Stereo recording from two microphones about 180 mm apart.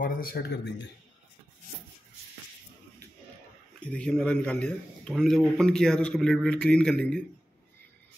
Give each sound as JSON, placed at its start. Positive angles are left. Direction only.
{"t": 0.0, "sound": "speech", "side_deg": 55}
{"t": 3.8, "sound": "a man's voice", "side_deg": 5}